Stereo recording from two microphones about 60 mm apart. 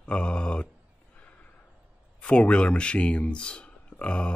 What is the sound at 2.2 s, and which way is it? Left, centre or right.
Speech, centre.